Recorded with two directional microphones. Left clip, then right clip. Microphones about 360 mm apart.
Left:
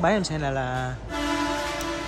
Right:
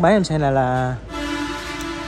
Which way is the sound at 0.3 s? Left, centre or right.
Centre.